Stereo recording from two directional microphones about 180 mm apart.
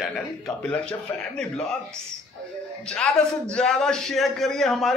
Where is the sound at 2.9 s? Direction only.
5° left (ahead or behind).